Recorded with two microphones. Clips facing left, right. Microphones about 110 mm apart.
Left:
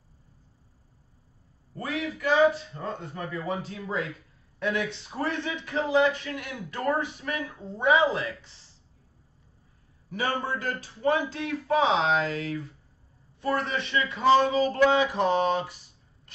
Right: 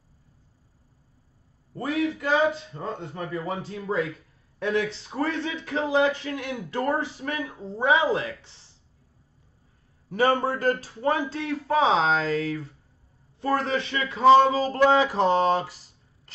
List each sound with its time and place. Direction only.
1.8 s speech: 25° right (ahead or behind)
10.3 s speech: 35° right (ahead or behind)